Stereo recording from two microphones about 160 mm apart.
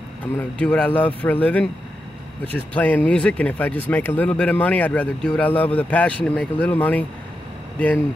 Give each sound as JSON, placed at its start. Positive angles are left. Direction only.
{"t": 0.2, "sound": "speech", "side_deg": 10}